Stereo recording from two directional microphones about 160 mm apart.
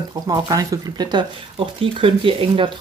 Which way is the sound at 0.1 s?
20° right (ahead or behind).